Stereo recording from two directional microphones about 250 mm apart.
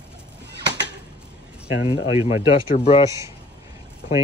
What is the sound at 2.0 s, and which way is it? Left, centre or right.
Speech, centre.